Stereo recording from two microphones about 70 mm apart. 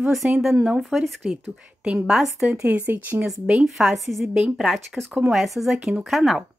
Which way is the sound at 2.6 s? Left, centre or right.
Right.